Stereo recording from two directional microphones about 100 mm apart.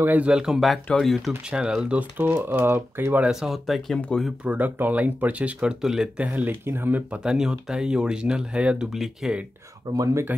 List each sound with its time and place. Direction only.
0.0 s speech: 15° right (ahead or behind); by 1.3 s centre (ahead or behind)
1.3 s speech: 10° right (ahead or behind)
3.3 s speech: 5° right (ahead or behind)
4.5 s speech: 15° right (ahead or behind)
7.2 s speech: 5° right (ahead or behind)
9.9 s speech: 40° right (ahead or behind)